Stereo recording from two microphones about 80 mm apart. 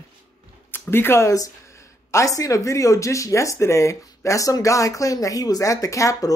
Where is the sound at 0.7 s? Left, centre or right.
Left.